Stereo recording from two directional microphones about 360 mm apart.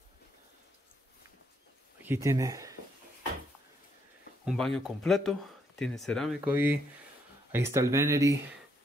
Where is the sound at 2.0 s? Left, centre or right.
Centre.